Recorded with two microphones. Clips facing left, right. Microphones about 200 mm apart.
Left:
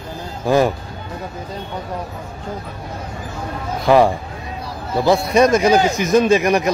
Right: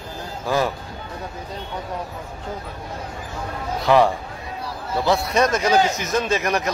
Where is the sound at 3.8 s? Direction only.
10° left (ahead or behind).